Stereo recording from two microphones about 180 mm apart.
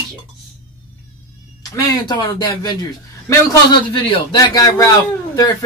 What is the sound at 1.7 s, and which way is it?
Speech, 20° left (ahead or behind).